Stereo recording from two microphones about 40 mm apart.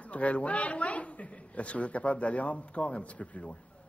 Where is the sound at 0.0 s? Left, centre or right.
Left.